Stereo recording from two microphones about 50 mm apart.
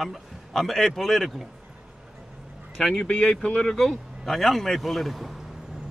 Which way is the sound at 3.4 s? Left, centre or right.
Centre.